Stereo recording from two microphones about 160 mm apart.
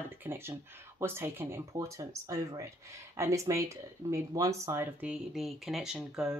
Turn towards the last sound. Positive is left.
turn(degrees=-5)  # may be behind; listen again after turning